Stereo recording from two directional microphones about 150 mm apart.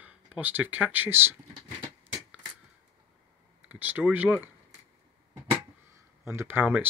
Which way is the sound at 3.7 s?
10° right (ahead or behind).